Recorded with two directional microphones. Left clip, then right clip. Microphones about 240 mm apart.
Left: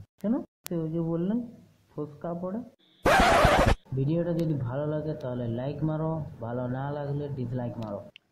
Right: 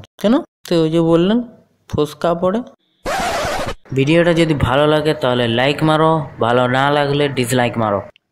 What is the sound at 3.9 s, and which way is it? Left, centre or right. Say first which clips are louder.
Speech: right 16 dB; centre.